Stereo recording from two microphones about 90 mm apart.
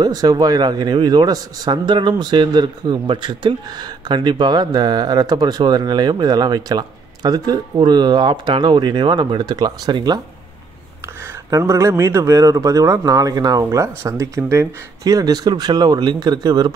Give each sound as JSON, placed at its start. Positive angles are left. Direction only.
{"t": 0.0, "sound": "speech", "side_deg": -50}
{"t": 11.5, "sound": "speech", "side_deg": -35}